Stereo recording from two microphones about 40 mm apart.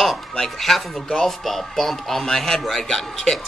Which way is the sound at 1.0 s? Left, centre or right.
Centre.